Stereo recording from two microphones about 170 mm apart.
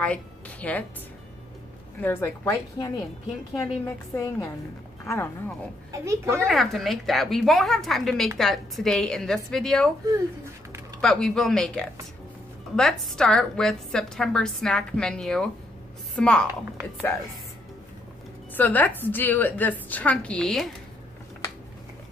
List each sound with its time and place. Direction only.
0.0 s a woman's voice: 10° left (ahead or behind)
2.0 s a woman's voice: 15° left (ahead or behind)
5.9 s a child's voice: 15° right (ahead or behind)
6.4 s a woman's voice: centre (ahead or behind)
11.0 s a woman's voice: 5° left (ahead or behind)
18.6 s a woman's voice: 10° left (ahead or behind)